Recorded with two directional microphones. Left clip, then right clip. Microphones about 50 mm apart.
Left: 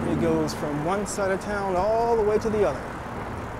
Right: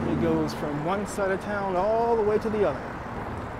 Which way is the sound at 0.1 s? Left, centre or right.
Centre.